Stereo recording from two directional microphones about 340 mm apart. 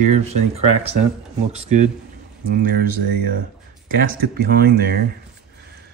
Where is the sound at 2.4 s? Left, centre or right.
Right.